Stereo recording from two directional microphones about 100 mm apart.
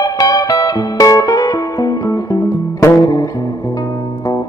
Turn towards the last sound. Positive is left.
turn(degrees=45)  # may be behind; listen again after turning